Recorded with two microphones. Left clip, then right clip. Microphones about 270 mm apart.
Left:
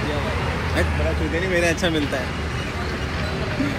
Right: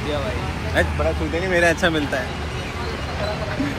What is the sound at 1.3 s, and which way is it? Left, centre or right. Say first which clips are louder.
Speech: right 3 dB; centre.